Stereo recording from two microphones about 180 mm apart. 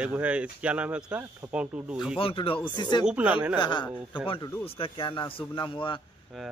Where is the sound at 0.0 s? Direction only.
10° right (ahead or behind).